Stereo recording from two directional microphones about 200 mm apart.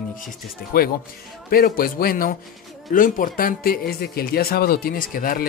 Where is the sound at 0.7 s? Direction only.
45° left (ahead or behind).